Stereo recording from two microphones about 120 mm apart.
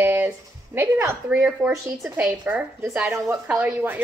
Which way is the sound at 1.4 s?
5° right (ahead or behind).